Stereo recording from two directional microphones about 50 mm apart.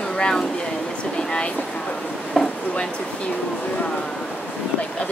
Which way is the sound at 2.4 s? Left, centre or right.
Centre.